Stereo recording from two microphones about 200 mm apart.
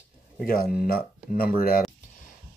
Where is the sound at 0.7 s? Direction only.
45° left (ahead or behind).